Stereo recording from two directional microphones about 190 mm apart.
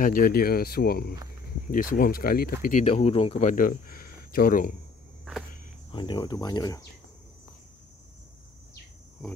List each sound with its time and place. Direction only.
0.0 s speech: 50° left (ahead or behind)
2.9 s speech: 30° left (ahead or behind); by 4.7 s 45° left (ahead or behind)
5.9 s speech: 25° left (ahead or behind)